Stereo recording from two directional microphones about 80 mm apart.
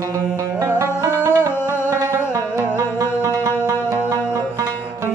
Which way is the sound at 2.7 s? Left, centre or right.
Right.